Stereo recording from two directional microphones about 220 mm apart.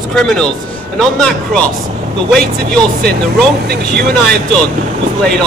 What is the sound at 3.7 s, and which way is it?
Speech, 45° right (ahead or behind).